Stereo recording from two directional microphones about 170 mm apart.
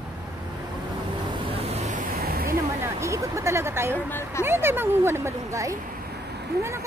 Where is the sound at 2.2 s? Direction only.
60° right (ahead or behind).